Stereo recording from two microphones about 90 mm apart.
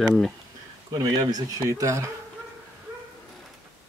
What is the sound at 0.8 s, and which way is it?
Speech, 45° right (ahead or behind).